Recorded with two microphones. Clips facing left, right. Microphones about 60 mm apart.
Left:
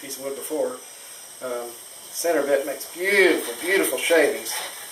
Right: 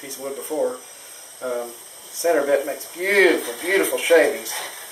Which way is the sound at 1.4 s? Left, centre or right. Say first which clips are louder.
Right 3 dB; centre.